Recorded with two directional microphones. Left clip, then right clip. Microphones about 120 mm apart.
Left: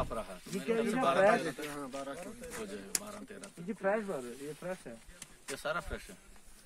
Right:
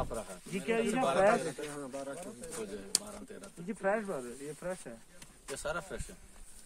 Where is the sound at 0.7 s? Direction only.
15° right (ahead or behind).